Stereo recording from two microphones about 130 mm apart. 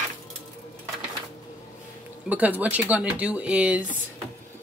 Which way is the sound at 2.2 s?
10° right (ahead or behind).